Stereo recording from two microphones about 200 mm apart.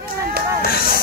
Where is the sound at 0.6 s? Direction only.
50° left (ahead or behind).